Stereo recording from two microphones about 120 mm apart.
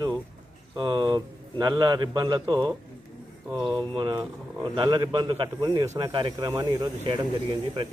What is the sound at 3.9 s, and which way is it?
Speech, 40° right (ahead or behind).